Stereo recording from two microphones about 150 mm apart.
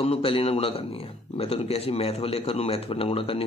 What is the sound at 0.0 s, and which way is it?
Speech, 40° left (ahead or behind).